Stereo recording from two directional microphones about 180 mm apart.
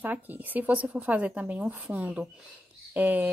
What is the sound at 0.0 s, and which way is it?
Speech, 10° right (ahead or behind).